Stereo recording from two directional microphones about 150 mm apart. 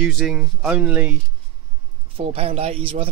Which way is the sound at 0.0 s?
Centre (ahead or behind).